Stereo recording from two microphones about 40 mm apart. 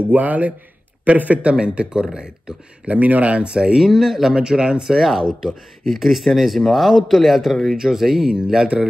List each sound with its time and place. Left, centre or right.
0.1 s speech: right
1.4 s speech: right
2.9 s speech: right
3.4 s speech: right
4.9 s speech: centre
7.7 s speech: centre